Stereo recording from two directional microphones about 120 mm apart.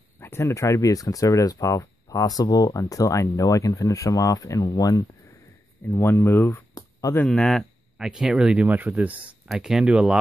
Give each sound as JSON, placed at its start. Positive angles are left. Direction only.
{"t": 0.2, "sound": "speech", "side_deg": 20}
{"t": 6.7, "sound": "a sound", "side_deg": 30}
{"t": 7.2, "sound": "speech", "side_deg": 5}